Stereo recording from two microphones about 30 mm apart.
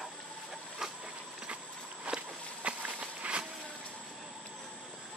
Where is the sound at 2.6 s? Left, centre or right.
Right.